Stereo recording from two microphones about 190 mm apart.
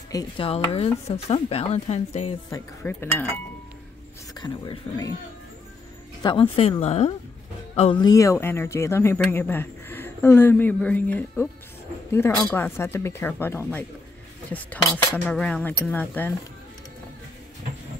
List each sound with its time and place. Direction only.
0.1 s speech: 20° left (ahead or behind)
0.5 s speech: 30° left (ahead or behind)
2.5 s speech: 10° left (ahead or behind)
6.8 s speech: 35° left (ahead or behind); by 16.3 s 10° left (ahead or behind)